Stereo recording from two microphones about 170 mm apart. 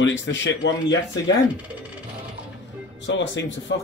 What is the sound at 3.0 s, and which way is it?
Speech, 90° left.